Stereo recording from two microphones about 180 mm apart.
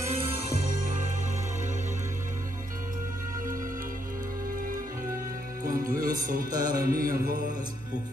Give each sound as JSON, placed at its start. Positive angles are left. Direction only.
{"t": 0.7, "sound": "music", "side_deg": -45}
{"t": 5.6, "sound": "music", "side_deg": -50}